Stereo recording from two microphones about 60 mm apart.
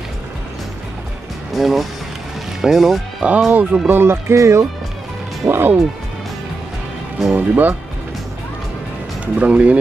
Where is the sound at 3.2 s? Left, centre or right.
Right.